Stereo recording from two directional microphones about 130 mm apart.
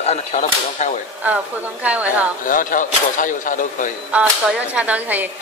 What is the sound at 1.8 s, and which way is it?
Speech, 10° right (ahead or behind).